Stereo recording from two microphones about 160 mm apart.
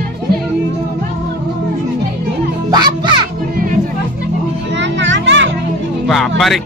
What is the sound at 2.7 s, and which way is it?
Music, 25° right (ahead or behind).